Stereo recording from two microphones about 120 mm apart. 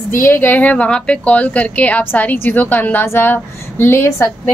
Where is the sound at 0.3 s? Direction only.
15° left (ahead or behind).